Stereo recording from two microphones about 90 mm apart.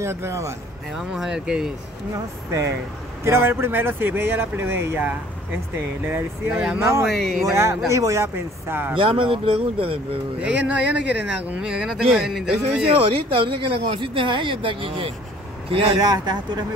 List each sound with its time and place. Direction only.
0.0 s speech: 30° right (ahead or behind)
1.1 s speech: 5° right (ahead or behind)
2.1 s speech: 35° right (ahead or behind)
7.1 s speech: 5° left (ahead or behind)
7.4 s speech: 30° right (ahead or behind)
8.9 s speech: 75° right (ahead or behind); by 9.9 s 90° right
10.4 s speech: 15° right (ahead or behind)
12.8 s speech: 90° right
16.0 s speech: 45° right (ahead or behind)